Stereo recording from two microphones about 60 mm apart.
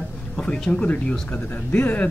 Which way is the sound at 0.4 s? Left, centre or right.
Centre.